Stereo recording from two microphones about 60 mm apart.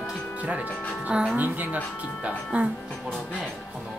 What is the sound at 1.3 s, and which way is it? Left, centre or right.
Speech, right.